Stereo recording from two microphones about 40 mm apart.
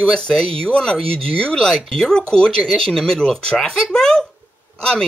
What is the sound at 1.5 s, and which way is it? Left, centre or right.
Speech, centre.